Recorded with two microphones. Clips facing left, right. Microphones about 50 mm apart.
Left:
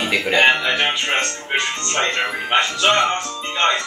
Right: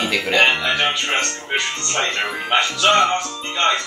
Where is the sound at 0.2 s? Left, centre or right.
Centre.